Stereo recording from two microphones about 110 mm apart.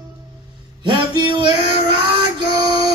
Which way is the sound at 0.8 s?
40° right (ahead or behind).